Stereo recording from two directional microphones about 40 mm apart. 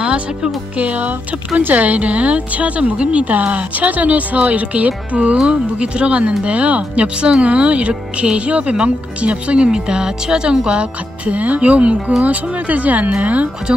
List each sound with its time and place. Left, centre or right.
0.0 s speech: right
9.7 s speech: centre; by 13.5 s right
13.7 s speech: right